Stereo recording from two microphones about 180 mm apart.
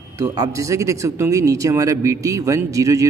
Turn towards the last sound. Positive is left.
turn(degrees=-15)  # may be behind; listen again after turning